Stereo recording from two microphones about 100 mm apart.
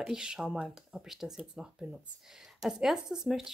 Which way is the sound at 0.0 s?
5° right (ahead or behind).